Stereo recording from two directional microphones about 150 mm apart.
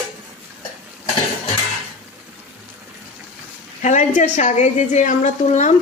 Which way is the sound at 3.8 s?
55° left (ahead or behind).